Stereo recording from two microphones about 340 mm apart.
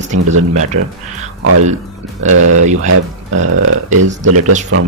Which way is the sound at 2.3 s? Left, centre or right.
Right.